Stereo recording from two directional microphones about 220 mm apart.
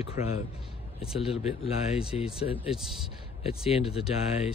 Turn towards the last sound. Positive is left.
turn(degrees=25)  # may be behind; listen again after turning